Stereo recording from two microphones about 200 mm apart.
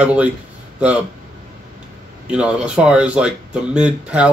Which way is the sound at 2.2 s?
5° right (ahead or behind).